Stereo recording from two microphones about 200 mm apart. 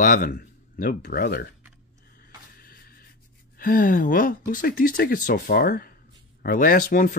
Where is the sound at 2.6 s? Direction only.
45° left (ahead or behind).